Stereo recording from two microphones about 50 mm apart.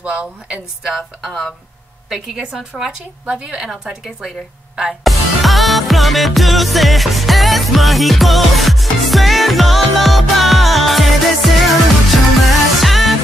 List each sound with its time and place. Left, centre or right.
0.0 s speech: right
1.2 s a woman's voice: centre
5.0 s music: centre